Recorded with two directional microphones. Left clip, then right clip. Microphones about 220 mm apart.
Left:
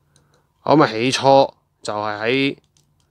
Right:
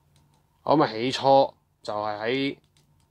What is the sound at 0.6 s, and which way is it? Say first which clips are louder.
Speech: left 7 dB; 45° left (ahead or behind).